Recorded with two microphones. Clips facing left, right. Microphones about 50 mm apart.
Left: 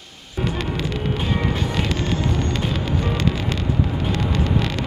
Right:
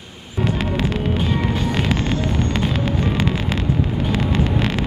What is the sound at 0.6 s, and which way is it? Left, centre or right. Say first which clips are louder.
Music: right 4 dB; centre.